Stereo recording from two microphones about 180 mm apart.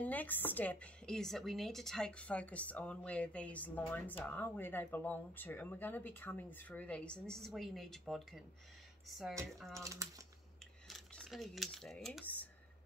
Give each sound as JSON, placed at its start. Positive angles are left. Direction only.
{"t": 0.0, "sound": "speech", "side_deg": 10}
{"t": 9.8, "sound": "speech", "side_deg": -20}
{"t": 10.9, "sound": "speech", "side_deg": 0}